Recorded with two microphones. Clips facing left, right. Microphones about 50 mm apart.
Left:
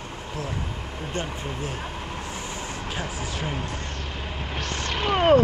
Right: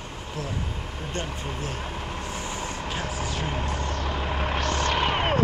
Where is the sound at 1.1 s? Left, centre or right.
Centre.